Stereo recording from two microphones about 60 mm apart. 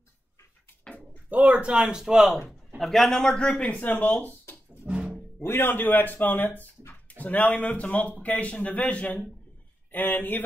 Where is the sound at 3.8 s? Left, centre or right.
Left.